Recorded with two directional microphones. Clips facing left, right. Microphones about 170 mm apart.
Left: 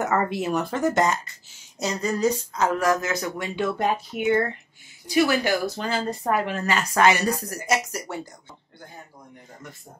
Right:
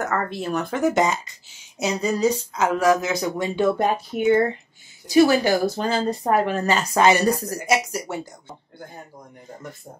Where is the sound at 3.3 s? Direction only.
35° right (ahead or behind).